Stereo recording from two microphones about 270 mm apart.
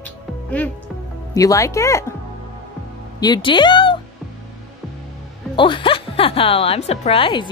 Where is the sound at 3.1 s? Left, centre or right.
Centre.